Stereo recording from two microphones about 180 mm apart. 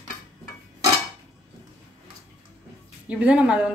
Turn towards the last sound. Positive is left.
turn(degrees=-5)  # may be behind; listen again after turning